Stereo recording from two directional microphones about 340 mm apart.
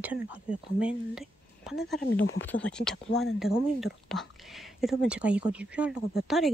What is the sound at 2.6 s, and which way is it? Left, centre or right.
Speech, centre.